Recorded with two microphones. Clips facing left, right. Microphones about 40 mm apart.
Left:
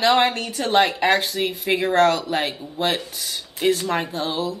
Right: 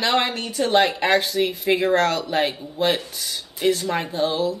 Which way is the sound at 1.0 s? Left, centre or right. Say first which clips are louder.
Even; centre.